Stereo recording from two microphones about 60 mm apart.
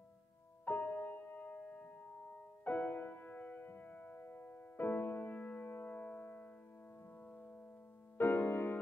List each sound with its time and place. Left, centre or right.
0.7 s music: left